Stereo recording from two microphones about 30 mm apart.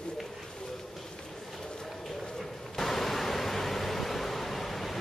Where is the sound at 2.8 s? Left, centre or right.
Centre.